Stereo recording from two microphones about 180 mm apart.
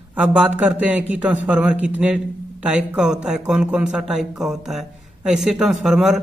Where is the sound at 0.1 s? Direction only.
5° right (ahead or behind).